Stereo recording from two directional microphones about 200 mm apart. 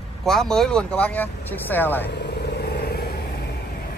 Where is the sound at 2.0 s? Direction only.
55° left (ahead or behind).